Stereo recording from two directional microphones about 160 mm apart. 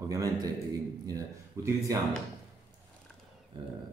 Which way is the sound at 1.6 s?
20° right (ahead or behind).